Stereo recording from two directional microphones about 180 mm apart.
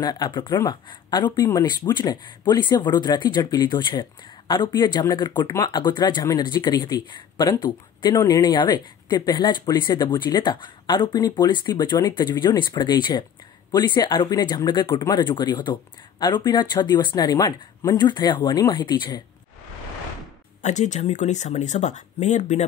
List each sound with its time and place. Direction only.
0.0 s speech: 25° left (ahead or behind)
20.6 s speech: 40° left (ahead or behind)